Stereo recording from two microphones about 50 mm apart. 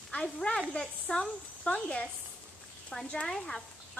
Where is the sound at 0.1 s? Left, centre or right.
Left.